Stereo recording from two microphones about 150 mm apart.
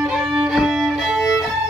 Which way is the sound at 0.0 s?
5° right (ahead or behind).